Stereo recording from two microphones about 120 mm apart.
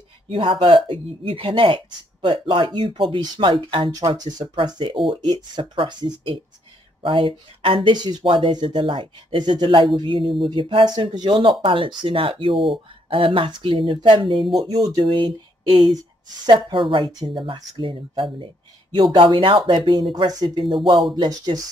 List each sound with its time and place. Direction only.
0.3 s speech: 45° right (ahead or behind)
4.2 s speech: 35° right (ahead or behind)
14.7 s speech: 35° right (ahead or behind)
16.0 s speech: 35° right (ahead or behind)